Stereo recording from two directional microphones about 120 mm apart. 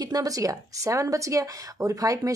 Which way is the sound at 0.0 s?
30° right (ahead or behind).